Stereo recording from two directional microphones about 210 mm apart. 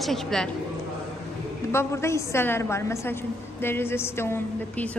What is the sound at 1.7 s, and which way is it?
A woman's voice, 15° left (ahead or behind).